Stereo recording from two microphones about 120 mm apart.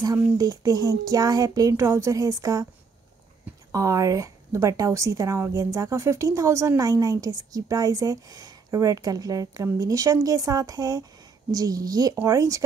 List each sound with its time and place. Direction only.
0.0 s speech: 30° right (ahead or behind)
3.7 s a woman's voice: 25° right (ahead or behind)